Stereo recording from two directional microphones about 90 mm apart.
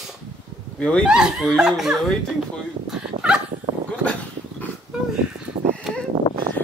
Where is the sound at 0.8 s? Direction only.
10° left (ahead or behind).